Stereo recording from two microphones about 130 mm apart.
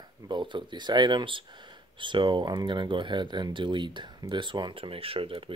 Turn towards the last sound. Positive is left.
turn(degrees=-45)  # may be behind; listen again after turning